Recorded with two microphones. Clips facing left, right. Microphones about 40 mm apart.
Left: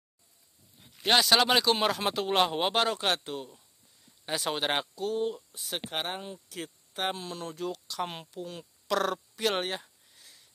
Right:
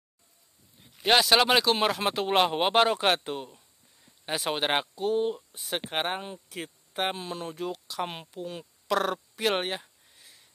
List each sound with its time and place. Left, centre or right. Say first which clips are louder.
0.9 s speech: right 2 dB; centre